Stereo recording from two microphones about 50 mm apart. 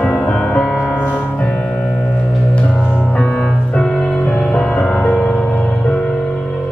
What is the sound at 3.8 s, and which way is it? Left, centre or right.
Music, centre.